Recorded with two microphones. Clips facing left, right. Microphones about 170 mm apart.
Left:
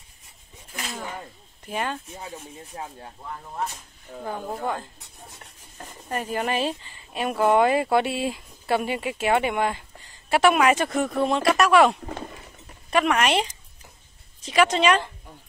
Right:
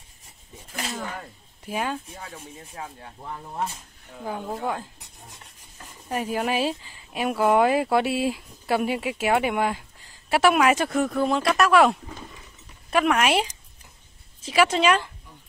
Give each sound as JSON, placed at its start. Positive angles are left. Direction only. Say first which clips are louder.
{"t": 0.9, "sound": "snake", "louder": "left 1 dB", "side_deg": 0}
{"t": 1.7, "sound": "speech", "louder": "right 1 dB", "side_deg": -5}
{"t": 2.7, "sound": "speech", "louder": "left 2 dB", "side_deg": 30}
{"t": 4.2, "sound": "speech", "louder": "even", "side_deg": 0}
{"t": 6.0, "sound": "speech", "louder": "right 1 dB", "side_deg": -5}